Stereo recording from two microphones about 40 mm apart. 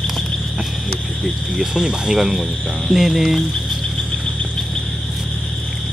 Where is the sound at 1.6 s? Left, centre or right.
Centre.